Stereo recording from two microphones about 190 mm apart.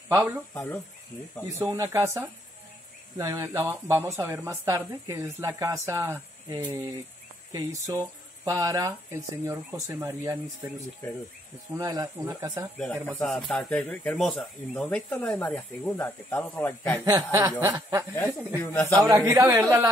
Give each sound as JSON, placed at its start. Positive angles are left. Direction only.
{"t": 0.1, "sound": "speech", "side_deg": -10}
{"t": 1.5, "sound": "speech", "side_deg": -15}
{"t": 11.7, "sound": "speech", "side_deg": -15}
{"t": 13.2, "sound": "speech", "side_deg": 0}
{"t": 17.0, "sound": "speech", "side_deg": -15}
{"t": 18.1, "sound": "speech", "side_deg": 15}
{"t": 18.9, "sound": "speech", "side_deg": -15}